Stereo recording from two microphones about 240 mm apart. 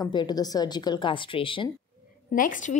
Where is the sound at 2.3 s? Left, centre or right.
Left.